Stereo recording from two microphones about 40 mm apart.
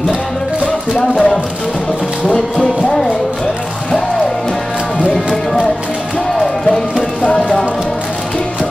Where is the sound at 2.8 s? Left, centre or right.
Centre.